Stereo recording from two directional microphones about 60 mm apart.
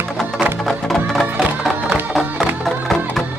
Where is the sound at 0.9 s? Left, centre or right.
Centre.